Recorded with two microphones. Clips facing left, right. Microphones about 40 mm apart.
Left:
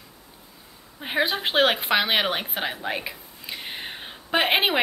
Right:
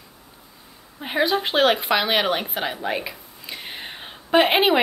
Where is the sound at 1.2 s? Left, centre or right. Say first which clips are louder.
Right 3 dB; centre.